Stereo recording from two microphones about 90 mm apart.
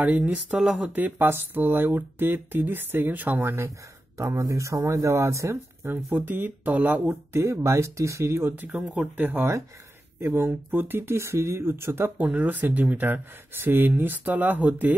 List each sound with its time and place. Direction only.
0.0 s speech: 15° right (ahead or behind)
1.1 s speech: 25° right (ahead or behind)
6.1 s speech: 20° right (ahead or behind)
8.7 s speech: 10° right (ahead or behind)